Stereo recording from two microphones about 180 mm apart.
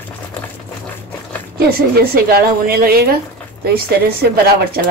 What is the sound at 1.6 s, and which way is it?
A woman's voice, 60° right (ahead or behind).